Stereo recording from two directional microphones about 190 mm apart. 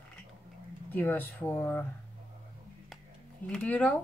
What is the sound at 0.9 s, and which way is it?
Speech, 10° left (ahead or behind).